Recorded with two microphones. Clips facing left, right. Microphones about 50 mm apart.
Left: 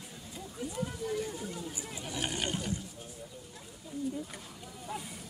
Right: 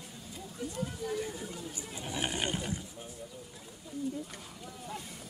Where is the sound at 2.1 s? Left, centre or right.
Right.